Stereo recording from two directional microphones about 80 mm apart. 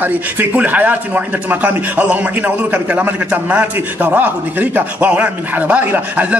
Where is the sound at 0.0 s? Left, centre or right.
Right.